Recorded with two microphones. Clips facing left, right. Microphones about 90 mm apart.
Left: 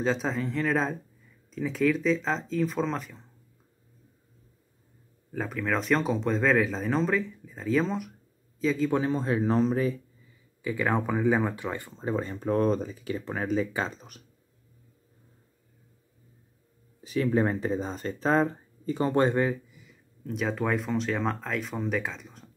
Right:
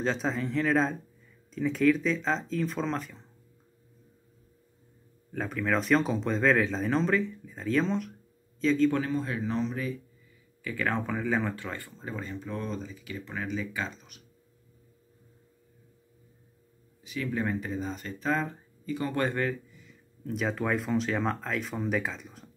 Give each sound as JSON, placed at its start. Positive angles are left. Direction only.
{"t": 0.0, "sound": "speech", "side_deg": 0}
{"t": 5.3, "sound": "speech", "side_deg": 0}
{"t": 9.1, "sound": "speech", "side_deg": 30}
{"t": 10.6, "sound": "speech", "side_deg": 15}
{"t": 12.3, "sound": "speech", "side_deg": 45}
{"t": 17.0, "sound": "speech", "side_deg": 35}
{"t": 19.7, "sound": "speech", "side_deg": 5}